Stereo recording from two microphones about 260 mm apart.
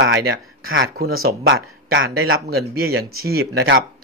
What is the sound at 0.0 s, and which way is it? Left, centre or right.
A man's voice, right.